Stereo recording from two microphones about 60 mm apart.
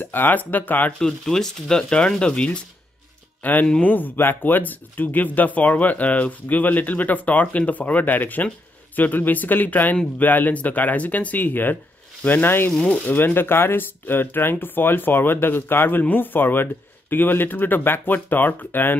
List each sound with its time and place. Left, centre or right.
0.0 s speech: left
0.9 s speech: centre
3.4 s speech: left